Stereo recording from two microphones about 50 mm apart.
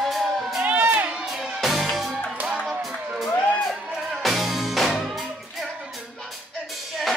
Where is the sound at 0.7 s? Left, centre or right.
Right.